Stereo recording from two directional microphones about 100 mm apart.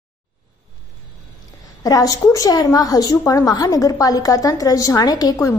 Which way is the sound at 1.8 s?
35° left (ahead or behind).